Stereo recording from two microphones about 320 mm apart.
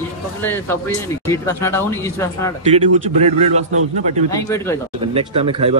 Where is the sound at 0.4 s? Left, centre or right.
Centre.